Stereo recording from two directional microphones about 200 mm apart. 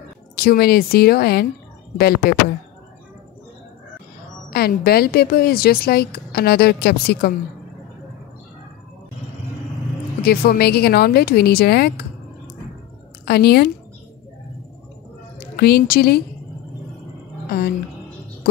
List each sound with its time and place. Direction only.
0.4 s speech: 50° left (ahead or behind)
4.5 s speech: 50° left (ahead or behind)
10.2 s speech: 50° left (ahead or behind)
13.2 s a woman's voice: 50° left (ahead or behind)
15.5 s speech: 50° left (ahead or behind)
17.5 s a woman's voice: 50° left (ahead or behind)